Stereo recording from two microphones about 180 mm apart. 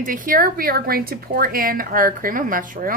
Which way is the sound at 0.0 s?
50° right (ahead or behind).